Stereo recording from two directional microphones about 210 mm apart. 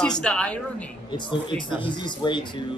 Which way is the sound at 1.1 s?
20° left (ahead or behind).